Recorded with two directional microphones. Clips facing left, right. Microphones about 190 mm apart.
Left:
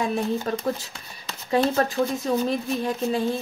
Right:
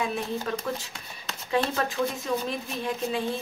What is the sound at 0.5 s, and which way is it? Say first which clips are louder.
Speech: left 4 dB; 40° left (ahead or behind).